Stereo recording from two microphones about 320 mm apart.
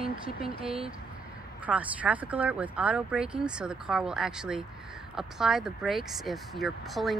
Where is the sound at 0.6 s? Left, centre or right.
Centre.